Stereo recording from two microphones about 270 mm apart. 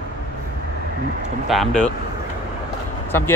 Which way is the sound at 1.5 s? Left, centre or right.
Centre.